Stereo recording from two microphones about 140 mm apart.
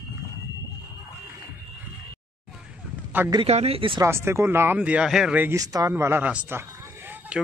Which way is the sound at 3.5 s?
45° right (ahead or behind).